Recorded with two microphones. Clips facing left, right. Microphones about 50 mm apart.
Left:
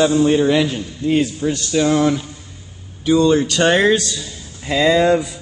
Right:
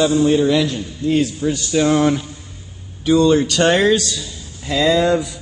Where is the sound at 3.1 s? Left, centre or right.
Centre.